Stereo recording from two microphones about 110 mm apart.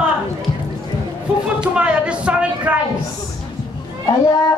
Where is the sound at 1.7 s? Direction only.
10° right (ahead or behind).